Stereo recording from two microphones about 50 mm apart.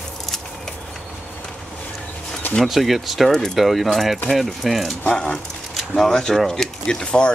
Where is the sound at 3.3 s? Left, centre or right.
Centre.